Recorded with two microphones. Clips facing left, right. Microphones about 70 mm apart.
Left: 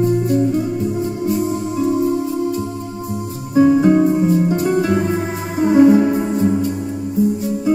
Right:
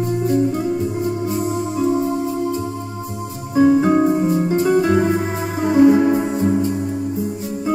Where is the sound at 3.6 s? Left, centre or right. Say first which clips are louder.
Left 2 dB; right.